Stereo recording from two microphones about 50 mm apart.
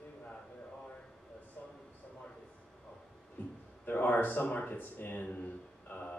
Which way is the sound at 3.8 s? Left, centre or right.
Left.